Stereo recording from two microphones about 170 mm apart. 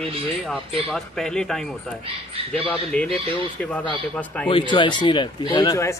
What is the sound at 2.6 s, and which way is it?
Speech, 10° left (ahead or behind).